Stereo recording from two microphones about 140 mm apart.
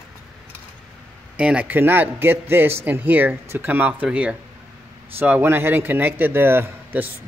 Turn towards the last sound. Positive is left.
turn(degrees=-15)  # may be behind; listen again after turning